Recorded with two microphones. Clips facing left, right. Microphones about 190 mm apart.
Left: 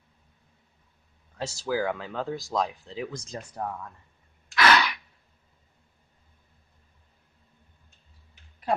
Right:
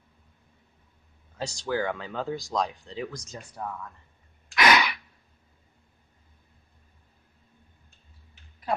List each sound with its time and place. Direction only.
1.3 s speech: 5° left (ahead or behind)
3.1 s speech: 30° left (ahead or behind)
3.3 s speech: 40° left (ahead or behind)
4.6 s a sound: 10° right (ahead or behind)